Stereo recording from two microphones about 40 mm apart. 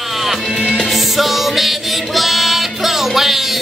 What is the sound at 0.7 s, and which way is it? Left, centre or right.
Music, centre.